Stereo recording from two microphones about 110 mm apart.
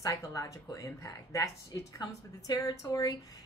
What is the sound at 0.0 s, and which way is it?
A woman's voice, 30° left (ahead or behind).